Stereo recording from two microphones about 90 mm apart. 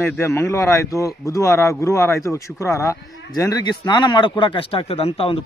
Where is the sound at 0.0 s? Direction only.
30° left (ahead or behind).